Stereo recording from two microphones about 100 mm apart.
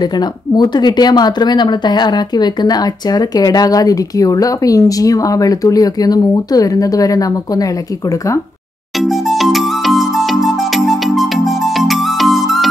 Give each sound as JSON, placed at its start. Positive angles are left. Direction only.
{"t": 0.6, "sound": "speech", "side_deg": 45}
{"t": 9.0, "sound": "music", "side_deg": 0}